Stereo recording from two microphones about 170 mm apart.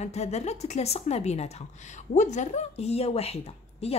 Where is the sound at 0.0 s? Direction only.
40° left (ahead or behind).